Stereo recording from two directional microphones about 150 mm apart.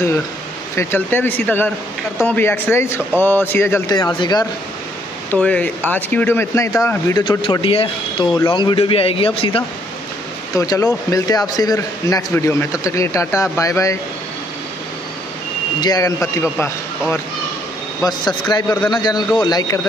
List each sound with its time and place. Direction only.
0.7 s speech: 15° left (ahead or behind)
3.9 s a man's voice: 30° left (ahead or behind)
5.3 s a man's voice: 10° left (ahead or behind)
7.2 s a man's voice: 35° left (ahead or behind)
10.5 s a man's voice: 20° left (ahead or behind)
15.8 s a man's voice: 25° left (ahead or behind)
18.0 s a man's voice: 25° left (ahead or behind)